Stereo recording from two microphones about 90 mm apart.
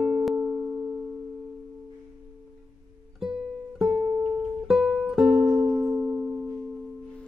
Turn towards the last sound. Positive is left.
turn(degrees=-15)  # may be behind; listen again after turning